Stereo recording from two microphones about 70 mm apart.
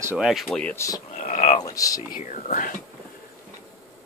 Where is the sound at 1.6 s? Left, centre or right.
Left.